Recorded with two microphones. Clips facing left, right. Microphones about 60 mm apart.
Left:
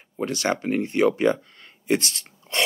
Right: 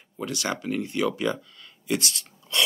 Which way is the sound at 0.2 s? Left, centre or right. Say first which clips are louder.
Left 5 dB; left.